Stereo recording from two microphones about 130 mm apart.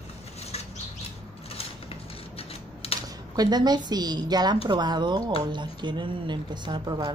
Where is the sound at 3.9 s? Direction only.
30° right (ahead or behind).